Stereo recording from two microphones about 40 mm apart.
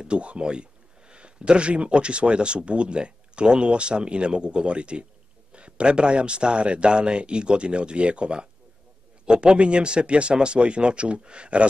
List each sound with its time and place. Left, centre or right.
0.0 s speech: right